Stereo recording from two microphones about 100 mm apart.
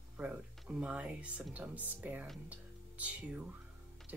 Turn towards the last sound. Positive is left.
turn(degrees=-15)  # may be behind; listen again after turning